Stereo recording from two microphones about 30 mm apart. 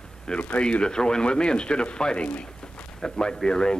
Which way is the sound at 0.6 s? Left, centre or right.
Left.